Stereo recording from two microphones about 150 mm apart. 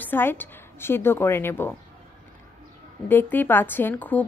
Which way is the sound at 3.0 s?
15° left (ahead or behind).